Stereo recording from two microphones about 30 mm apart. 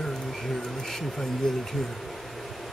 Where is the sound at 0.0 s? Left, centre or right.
Centre.